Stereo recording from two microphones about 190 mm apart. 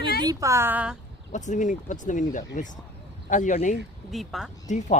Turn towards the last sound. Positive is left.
turn(degrees=40)  # may be behind; listen again after turning